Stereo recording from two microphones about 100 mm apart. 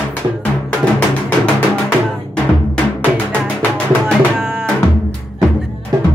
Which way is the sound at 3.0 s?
15° left (ahead or behind).